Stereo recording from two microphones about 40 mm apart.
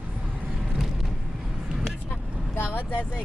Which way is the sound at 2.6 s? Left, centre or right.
Left.